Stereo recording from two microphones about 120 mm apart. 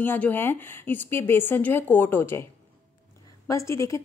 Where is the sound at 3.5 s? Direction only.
25° left (ahead or behind).